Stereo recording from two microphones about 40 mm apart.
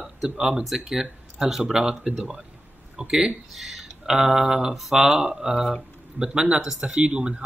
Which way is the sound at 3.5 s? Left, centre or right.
Centre.